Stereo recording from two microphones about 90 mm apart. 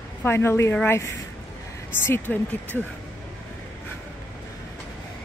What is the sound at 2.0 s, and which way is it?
Speech, 25° left (ahead or behind).